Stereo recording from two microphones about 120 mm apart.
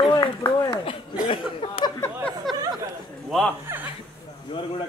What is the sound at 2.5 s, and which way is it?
Chatter, centre (ahead or behind).